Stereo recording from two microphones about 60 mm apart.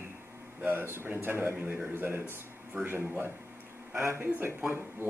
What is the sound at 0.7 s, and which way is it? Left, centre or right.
A man's voice, right.